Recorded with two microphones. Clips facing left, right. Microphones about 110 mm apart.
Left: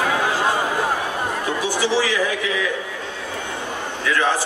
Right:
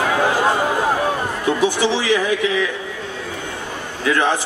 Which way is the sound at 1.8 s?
20° right (ahead or behind).